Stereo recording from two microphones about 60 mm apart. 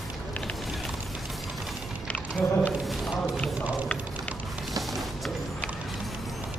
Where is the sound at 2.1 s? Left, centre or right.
Left.